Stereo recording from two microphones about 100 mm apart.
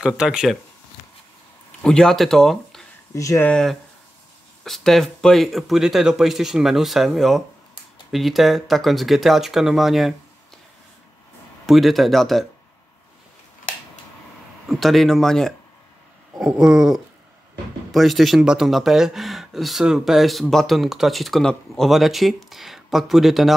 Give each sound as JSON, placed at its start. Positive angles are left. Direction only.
{"t": 0.0, "sound": "a sound", "side_deg": -5}
{"t": 1.8, "sound": "speech", "side_deg": 5}
{"t": 3.2, "sound": "speech", "side_deg": 30}
{"t": 3.4, "sound": "speech", "side_deg": 5}
{"t": 11.6, "sound": "speech", "side_deg": 0}
{"t": 14.7, "sound": "speech", "side_deg": 0}
{"t": 16.3, "sound": "a sound", "side_deg": -10}
{"t": 17.9, "sound": "speech", "side_deg": 0}